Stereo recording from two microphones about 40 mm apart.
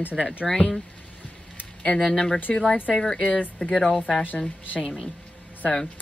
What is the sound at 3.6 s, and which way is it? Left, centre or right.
Speech, centre.